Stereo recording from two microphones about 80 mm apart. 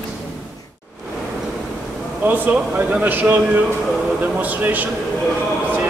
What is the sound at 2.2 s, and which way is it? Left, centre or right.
Speech, right.